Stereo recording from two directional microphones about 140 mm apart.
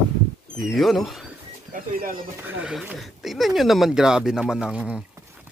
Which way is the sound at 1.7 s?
80° right.